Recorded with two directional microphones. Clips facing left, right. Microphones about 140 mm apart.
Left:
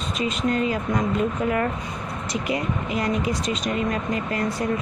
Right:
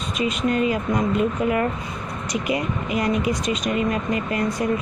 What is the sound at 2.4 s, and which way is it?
Speech, 15° right (ahead or behind).